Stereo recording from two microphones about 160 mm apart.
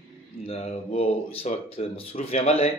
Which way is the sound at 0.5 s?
40° left (ahead or behind).